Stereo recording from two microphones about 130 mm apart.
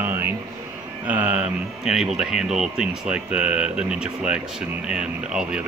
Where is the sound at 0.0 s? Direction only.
15° right (ahead or behind).